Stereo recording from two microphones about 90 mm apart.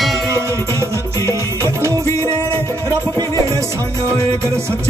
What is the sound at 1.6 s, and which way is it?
Music, 30° right (ahead or behind).